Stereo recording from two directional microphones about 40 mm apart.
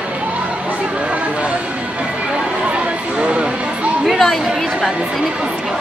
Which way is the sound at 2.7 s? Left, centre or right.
Right.